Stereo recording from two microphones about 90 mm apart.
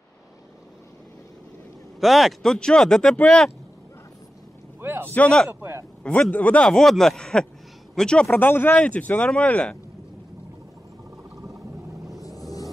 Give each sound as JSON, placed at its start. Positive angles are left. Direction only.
{"t": 2.0, "sound": "speech", "side_deg": 0}
{"t": 4.7, "sound": "vehicle", "side_deg": -25}
{"t": 5.1, "sound": "speech", "side_deg": 10}
{"t": 5.5, "sound": "a sound", "side_deg": -25}
{"t": 6.3, "sound": "speech", "side_deg": 15}
{"t": 8.3, "sound": "speech", "side_deg": 25}
{"t": 12.4, "sound": "a sound", "side_deg": 40}